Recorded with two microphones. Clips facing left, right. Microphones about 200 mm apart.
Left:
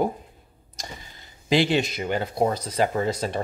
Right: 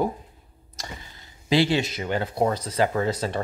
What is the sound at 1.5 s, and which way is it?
Speech, 15° left (ahead or behind).